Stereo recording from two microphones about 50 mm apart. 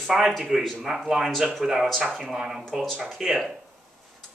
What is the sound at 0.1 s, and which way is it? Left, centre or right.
Speech, centre.